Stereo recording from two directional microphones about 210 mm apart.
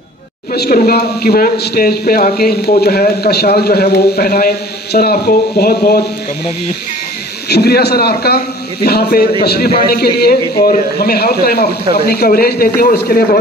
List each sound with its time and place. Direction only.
0.6 s speech: 45° left (ahead or behind)
7.4 s speech: 50° left (ahead or behind)